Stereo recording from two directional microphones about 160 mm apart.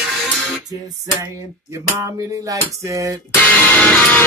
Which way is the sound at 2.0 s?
20° right (ahead or behind).